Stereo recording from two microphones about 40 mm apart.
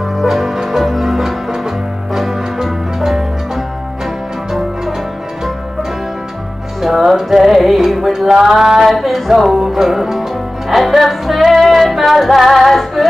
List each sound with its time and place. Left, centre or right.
0.2 s music: centre
6.8 s music: centre